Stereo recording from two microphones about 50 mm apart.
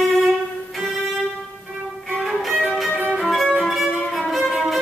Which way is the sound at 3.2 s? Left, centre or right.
Centre.